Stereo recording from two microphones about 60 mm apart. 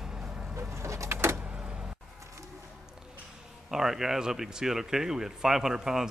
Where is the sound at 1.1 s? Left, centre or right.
Right.